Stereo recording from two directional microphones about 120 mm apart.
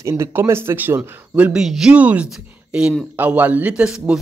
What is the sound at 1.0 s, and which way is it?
Speech, 10° right (ahead or behind).